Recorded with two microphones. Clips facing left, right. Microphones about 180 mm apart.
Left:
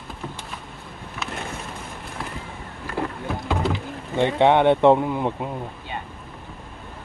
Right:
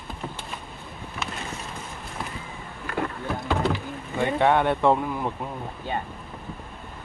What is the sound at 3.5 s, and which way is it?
Rowboat, 10° left (ahead or behind).